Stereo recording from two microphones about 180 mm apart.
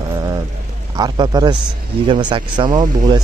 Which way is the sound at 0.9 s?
25° right (ahead or behind).